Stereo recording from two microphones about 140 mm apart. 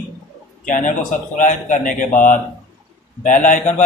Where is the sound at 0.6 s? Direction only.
65° left (ahead or behind).